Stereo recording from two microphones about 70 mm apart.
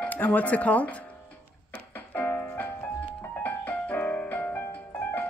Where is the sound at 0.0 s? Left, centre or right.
Left.